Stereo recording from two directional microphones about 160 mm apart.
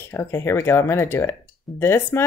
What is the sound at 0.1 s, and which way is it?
Speech, 15° left (ahead or behind).